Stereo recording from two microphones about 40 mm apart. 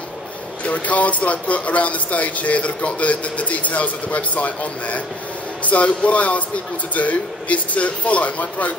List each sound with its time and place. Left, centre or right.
0.7 s speech: left